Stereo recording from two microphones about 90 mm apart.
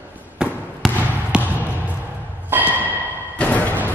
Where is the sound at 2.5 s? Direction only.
20° right (ahead or behind).